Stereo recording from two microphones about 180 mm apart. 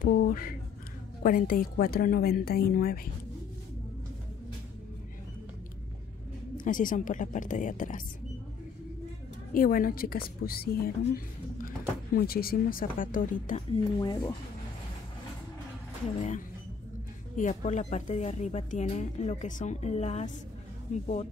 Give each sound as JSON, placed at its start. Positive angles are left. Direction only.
{"t": 0.0, "sound": "a woman's voice", "side_deg": 55}
{"t": 6.5, "sound": "a woman's voice", "side_deg": 50}
{"t": 9.5, "sound": "a woman's voice", "side_deg": 50}
{"t": 13.9, "sound": "speech", "side_deg": 25}
{"t": 16.2, "sound": "a woman's voice", "side_deg": 45}